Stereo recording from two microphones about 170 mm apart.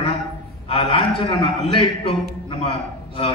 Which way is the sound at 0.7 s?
30° left (ahead or behind).